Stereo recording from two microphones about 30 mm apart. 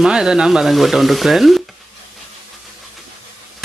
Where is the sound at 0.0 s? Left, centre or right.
Right.